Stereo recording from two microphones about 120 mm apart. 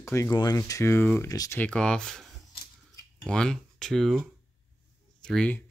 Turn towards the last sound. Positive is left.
turn(degrees=10)  # may be behind; listen again after turning